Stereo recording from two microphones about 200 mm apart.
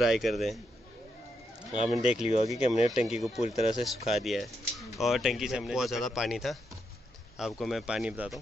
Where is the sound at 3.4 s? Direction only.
35° left (ahead or behind).